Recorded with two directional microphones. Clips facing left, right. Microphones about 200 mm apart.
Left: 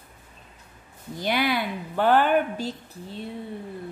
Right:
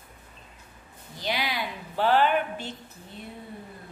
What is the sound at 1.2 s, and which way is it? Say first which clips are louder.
A woman's voice: left 6 dB; 55° left (ahead or behind).